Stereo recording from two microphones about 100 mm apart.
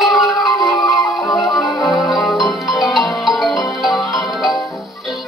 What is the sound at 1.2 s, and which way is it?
Music, 30° left (ahead or behind).